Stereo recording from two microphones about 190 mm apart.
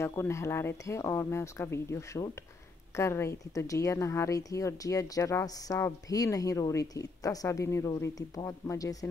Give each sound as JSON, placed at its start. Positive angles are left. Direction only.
{"t": 0.0, "sound": "speech", "side_deg": 15}